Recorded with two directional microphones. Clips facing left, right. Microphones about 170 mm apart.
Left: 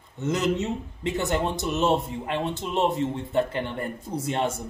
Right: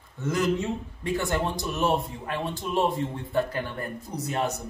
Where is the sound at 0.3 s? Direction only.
20° left (ahead or behind).